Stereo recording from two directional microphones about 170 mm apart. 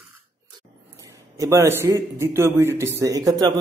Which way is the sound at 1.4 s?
15° right (ahead or behind).